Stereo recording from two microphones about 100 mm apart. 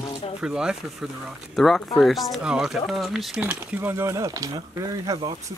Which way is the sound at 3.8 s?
25° right (ahead or behind).